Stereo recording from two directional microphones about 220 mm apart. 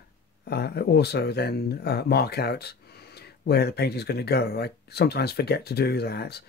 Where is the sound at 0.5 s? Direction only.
45° left (ahead or behind).